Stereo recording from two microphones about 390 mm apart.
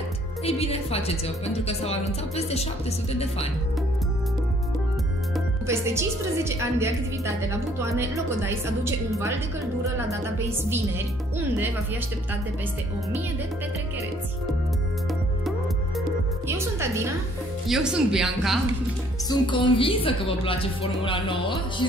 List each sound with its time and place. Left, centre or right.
0.5 s a woman's voice: centre
5.3 s a woman's voice: centre
16.4 s a woman's voice: centre
19.2 s a woman's voice: centre